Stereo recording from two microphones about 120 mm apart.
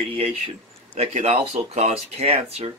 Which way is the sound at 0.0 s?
55° right (ahead or behind).